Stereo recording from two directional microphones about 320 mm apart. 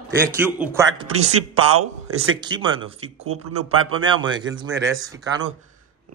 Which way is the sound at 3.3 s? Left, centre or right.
Right.